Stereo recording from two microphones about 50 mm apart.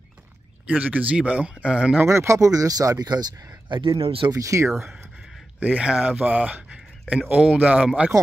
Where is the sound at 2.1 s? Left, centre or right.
Right.